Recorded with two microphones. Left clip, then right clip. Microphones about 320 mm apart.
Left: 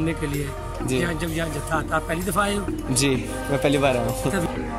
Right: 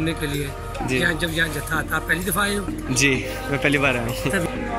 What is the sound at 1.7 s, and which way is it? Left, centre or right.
Speech, centre.